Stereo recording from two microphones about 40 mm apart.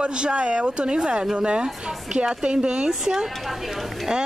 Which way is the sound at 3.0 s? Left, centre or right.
Centre.